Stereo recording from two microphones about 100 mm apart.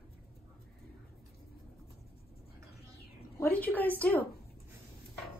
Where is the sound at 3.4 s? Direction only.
15° left (ahead or behind).